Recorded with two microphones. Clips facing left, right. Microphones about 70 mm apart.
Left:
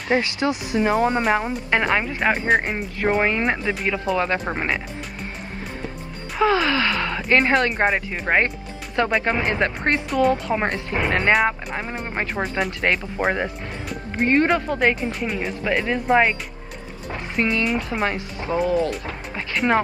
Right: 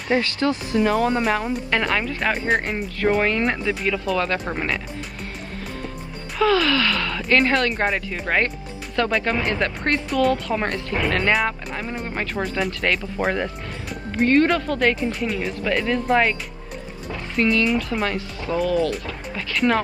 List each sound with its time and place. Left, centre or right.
0.1 s speech: centre
2.4 s speech: centre
2.7 s speech: centre
6.4 s speech: left
15.0 s speech: centre
15.4 s speech: centre; by 19.6 s left